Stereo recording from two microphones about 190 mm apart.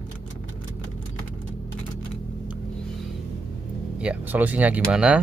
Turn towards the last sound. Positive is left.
turn(degrees=-5)  # may be behind; listen again after turning